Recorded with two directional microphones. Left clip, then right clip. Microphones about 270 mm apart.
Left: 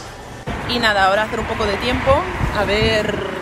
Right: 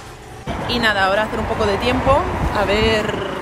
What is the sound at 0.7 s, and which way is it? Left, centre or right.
Speech, centre.